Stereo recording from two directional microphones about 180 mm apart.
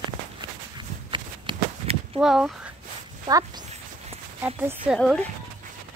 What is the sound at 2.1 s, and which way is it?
Speech, centre (ahead or behind).